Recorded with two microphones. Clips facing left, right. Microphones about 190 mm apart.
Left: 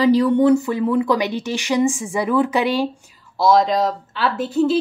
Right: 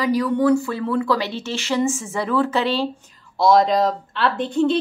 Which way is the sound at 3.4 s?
Centre (ahead or behind).